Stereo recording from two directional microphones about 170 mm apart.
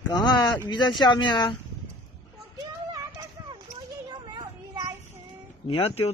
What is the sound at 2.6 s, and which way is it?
Clip-clop, 20° right (ahead or behind).